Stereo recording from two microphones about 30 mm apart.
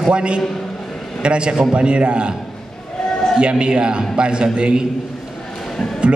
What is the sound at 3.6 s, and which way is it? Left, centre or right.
A man's voice, right.